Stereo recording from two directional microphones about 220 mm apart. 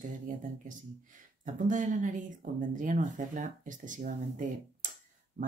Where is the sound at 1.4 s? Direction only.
35° right (ahead or behind).